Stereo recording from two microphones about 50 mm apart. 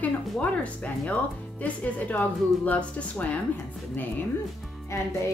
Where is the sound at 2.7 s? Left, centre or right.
Left.